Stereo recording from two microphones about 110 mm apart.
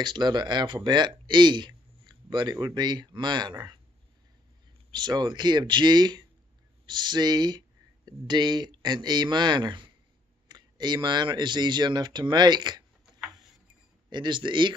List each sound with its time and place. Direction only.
0.0 s speech: 40° right (ahead or behind)
4.9 s speech: 45° right (ahead or behind)
14.1 s speech: 45° right (ahead or behind)